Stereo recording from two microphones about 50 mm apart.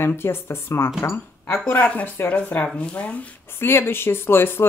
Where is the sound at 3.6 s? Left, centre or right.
Left.